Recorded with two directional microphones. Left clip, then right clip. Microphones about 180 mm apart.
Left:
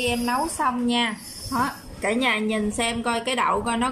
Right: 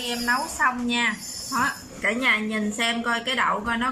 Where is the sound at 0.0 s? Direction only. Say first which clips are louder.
Left 1 dB; 20° left (ahead or behind).